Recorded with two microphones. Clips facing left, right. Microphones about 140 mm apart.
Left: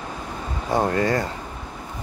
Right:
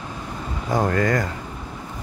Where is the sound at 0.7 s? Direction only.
25° left (ahead or behind).